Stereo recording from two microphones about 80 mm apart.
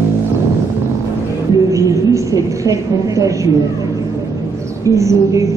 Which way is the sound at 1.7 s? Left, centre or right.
Right.